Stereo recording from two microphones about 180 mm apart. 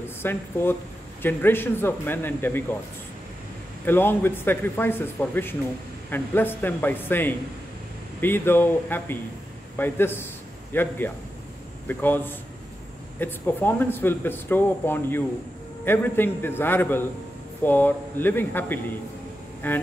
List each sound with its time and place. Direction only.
0.2 s speech: 10° left (ahead or behind)
3.8 s speech: 10° left (ahead or behind)